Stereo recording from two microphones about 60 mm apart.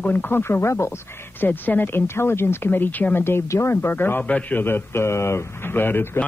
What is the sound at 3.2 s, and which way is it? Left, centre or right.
Speech, left.